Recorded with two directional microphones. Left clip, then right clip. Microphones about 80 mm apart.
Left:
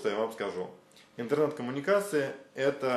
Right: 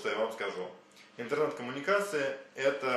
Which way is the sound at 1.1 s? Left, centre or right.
Centre.